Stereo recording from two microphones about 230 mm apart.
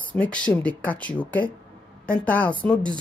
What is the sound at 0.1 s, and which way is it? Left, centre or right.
Speech, centre.